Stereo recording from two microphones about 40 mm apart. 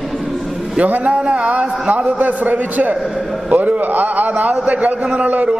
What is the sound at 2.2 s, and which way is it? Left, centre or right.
A man's voice, right.